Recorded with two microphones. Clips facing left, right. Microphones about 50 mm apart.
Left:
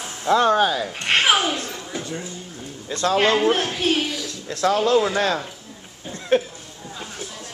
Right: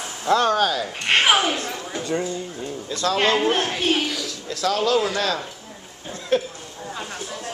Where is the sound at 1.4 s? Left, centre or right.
Right.